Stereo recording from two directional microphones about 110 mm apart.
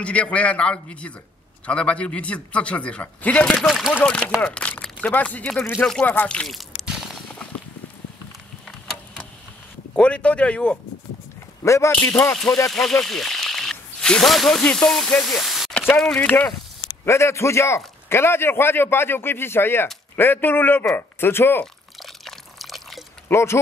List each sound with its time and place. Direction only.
0.0 s speech: 10° left (ahead or behind)
3.4 s speech: centre (ahead or behind)
6.1 s a sound: 10° left (ahead or behind)
9.9 s speech: 10° left (ahead or behind)
11.6 s a man's voice: 25° left (ahead or behind)
13.0 s snake: 5° left (ahead or behind)
14.6 s speech: 10° left (ahead or behind)
16.0 s speech: 10° left (ahead or behind)
17.0 s a man's voice: 25° left (ahead or behind)
22.0 s drip: centre (ahead or behind)
23.2 s speech: 25° left (ahead or behind)